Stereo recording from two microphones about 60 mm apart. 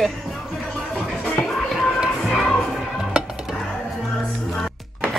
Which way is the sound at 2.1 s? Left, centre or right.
Centre.